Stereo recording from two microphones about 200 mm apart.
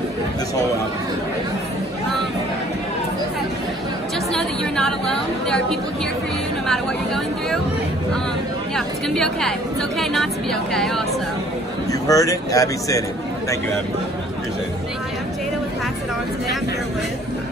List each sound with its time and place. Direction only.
4.3 s chatter: 5° left (ahead or behind)
8.7 s a woman's voice: centre (ahead or behind)
11.9 s speech: 15° left (ahead or behind)